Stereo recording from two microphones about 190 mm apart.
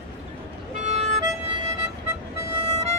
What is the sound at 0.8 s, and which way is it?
Music, 35° right (ahead or behind).